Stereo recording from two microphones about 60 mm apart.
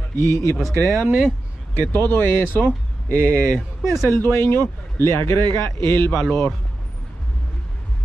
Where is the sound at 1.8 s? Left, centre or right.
Left.